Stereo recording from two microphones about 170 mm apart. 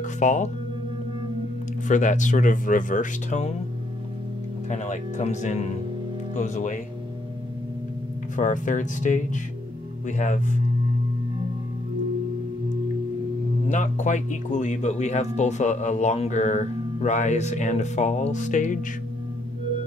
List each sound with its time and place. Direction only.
0.0 s speech: 45° left (ahead or behind)
1.9 s speech: 45° left (ahead or behind)
4.6 s speech: 45° left (ahead or behind)
8.4 s speech: 50° left (ahead or behind)
13.7 s speech: 45° left (ahead or behind)